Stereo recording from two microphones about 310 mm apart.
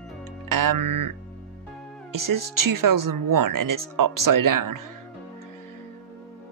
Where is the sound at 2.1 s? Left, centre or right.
Right.